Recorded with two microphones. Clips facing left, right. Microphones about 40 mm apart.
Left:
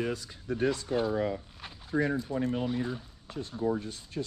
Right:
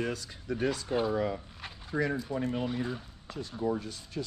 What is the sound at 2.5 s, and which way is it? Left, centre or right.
Speech, centre.